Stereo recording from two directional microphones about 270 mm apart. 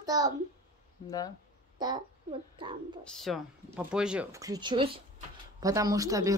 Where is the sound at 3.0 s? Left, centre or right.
Centre.